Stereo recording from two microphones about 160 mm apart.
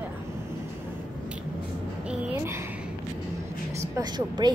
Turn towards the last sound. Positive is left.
turn(degrees=-25)  # may be behind; listen again after turning